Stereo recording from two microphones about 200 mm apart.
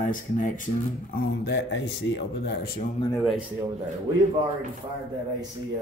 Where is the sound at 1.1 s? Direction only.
55° left (ahead or behind).